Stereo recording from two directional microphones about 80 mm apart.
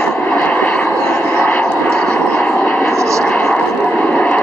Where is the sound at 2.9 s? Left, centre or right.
Right.